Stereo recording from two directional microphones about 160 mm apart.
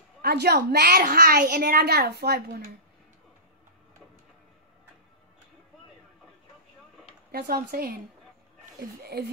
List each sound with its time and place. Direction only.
0.2 s a woman's voice: 80° right
7.2 s speech: 70° right (ahead or behind)
9.0 s a woman's voice: 80° right